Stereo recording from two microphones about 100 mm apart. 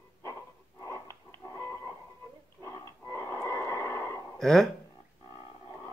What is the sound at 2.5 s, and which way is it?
Pig, 30° left (ahead or behind).